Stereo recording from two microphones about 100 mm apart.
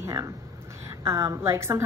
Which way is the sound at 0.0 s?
30° right (ahead or behind).